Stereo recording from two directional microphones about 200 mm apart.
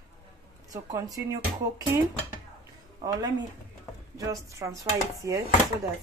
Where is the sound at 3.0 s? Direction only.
15° right (ahead or behind).